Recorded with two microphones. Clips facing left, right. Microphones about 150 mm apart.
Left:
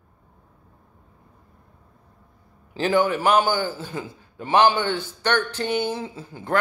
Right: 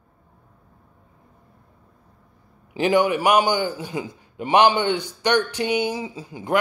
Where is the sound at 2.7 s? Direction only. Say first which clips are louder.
Right 2 dB; 15° right (ahead or behind).